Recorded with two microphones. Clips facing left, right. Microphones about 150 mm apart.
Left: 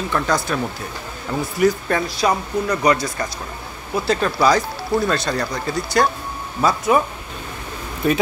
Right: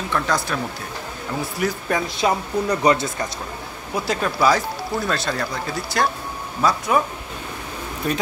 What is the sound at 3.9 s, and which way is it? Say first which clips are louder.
Speech: left 3 dB; 10° right (ahead or behind).